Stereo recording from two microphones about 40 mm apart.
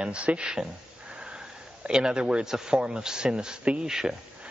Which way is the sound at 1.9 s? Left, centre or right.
Centre.